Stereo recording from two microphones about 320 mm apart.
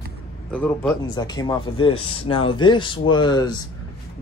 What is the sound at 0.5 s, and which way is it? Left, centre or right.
Speech, centre.